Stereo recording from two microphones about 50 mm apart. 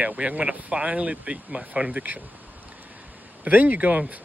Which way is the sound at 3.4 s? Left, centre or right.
Right.